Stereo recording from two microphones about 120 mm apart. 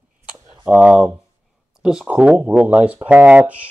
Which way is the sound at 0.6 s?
10° right (ahead or behind).